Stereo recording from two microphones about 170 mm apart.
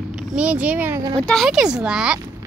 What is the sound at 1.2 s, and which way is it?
Speech, 5° left (ahead or behind).